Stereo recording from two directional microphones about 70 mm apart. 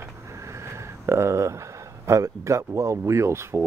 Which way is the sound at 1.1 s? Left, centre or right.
Right.